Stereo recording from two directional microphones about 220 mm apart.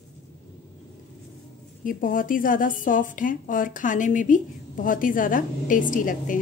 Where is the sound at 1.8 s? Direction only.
40° left (ahead or behind).